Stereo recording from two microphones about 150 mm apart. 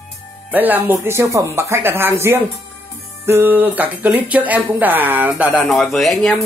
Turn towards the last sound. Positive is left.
turn(degrees=0)  # may be behind; listen again after turning